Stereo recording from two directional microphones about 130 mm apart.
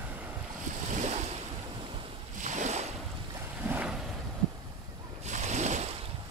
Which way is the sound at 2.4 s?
70° right (ahead or behind).